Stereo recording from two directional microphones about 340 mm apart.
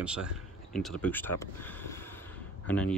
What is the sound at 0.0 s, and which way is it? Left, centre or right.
Speech, centre.